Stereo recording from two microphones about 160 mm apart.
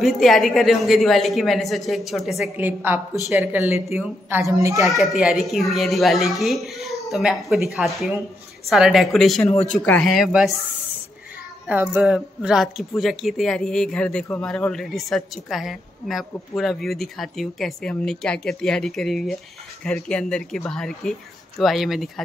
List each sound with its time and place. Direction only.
0.0 s a woman's voice: centre (ahead or behind); by 4.8 s 20° right (ahead or behind)
4.8 s a woman's voice: centre (ahead or behind)
11.6 s a woman's voice: 10° right (ahead or behind)